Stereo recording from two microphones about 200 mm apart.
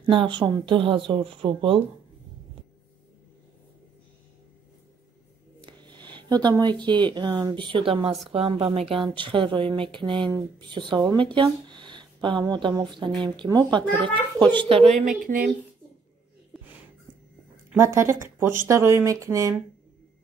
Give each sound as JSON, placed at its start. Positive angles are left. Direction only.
{"t": 0.0, "sound": "speech", "side_deg": -25}
{"t": 5.6, "sound": "speech", "side_deg": -20}
{"t": 15.0, "sound": "speech", "side_deg": -40}
{"t": 17.7, "sound": "speech", "side_deg": -15}